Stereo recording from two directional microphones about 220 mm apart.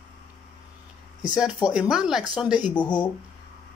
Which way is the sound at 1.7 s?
5° right (ahead or behind).